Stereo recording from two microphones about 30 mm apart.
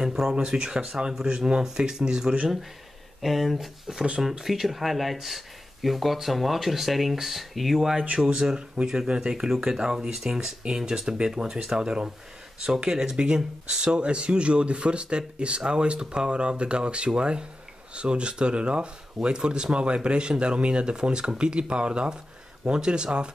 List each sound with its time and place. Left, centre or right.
0.0 s a sound: centre
0.4 s speech: right
3.2 s speech: centre
8.2 s speech: right
11.1 s speech: right
13.9 s speech: right